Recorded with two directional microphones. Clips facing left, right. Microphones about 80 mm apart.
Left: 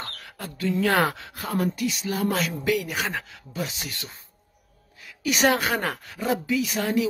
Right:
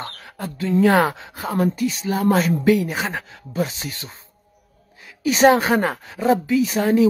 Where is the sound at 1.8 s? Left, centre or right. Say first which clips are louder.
Right 4 dB; right.